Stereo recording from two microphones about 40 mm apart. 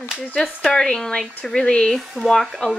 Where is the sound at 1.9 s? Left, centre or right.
Centre.